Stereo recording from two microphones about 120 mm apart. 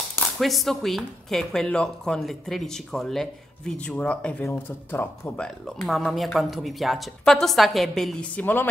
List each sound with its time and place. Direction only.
0.4 s speech: centre (ahead or behind); by 5.4 s 20° left (ahead or behind)
5.9 s speech: centre (ahead or behind)